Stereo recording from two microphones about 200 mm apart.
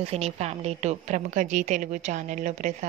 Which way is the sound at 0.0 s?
30° right (ahead or behind).